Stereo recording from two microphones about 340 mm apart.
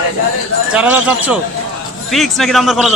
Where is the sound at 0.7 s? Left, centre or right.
Centre.